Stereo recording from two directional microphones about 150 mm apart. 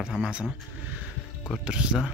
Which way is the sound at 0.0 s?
5° right (ahead or behind).